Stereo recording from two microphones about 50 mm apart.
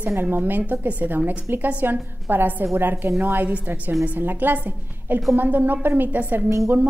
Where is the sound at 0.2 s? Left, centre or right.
Right.